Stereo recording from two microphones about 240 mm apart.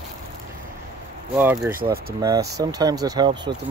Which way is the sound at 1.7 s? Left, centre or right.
Right.